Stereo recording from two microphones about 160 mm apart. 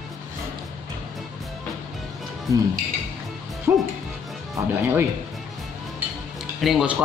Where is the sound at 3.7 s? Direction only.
15° right (ahead or behind).